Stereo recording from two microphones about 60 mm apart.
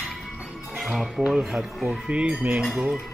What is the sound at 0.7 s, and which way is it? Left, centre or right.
Speech, centre.